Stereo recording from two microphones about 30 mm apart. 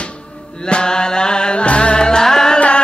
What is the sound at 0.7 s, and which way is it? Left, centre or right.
Chant, left.